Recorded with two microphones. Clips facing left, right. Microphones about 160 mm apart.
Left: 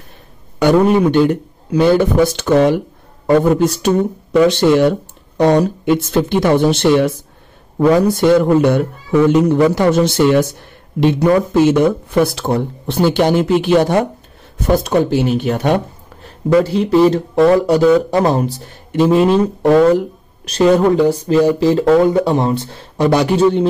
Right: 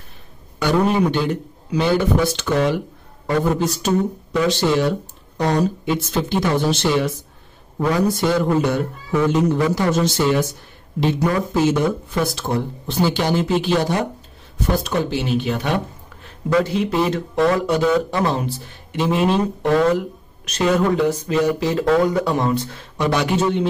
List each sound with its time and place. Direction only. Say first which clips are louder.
0.6 s speech: left 6 dB; 55° left (ahead or behind)
20.4 s speech: left 7 dB; 35° left (ahead or behind)